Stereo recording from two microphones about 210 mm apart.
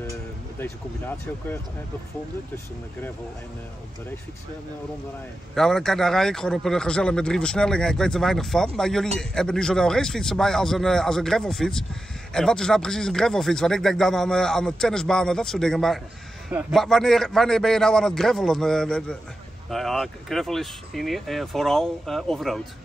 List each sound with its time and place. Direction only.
0.6 s speech: 10° left (ahead or behind)
5.5 s a man's voice: centre (ahead or behind)